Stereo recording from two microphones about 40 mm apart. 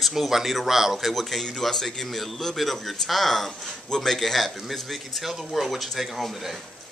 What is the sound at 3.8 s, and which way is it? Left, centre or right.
Speech, centre.